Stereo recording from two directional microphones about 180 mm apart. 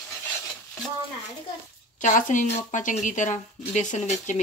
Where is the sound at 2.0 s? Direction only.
45° left (ahead or behind).